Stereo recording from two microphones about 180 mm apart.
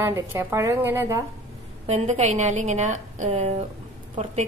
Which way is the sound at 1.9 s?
40° right (ahead or behind).